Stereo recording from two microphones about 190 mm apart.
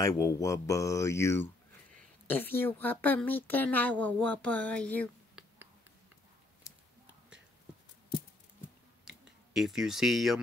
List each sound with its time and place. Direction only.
0.0 s a woman's voice: 15° left (ahead or behind)
6.7 s a sound: 15° left (ahead or behind)
9.0 s clicking: centre (ahead or behind)